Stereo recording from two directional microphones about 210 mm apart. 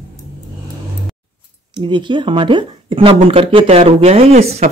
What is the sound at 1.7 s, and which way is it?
Speech, 20° right (ahead or behind).